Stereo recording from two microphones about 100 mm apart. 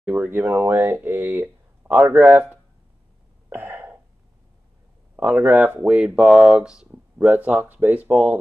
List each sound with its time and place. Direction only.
0.1 s speech: 20° right (ahead or behind)
3.4 s cough: 20° right (ahead or behind)
5.1 s speech: 15° right (ahead or behind)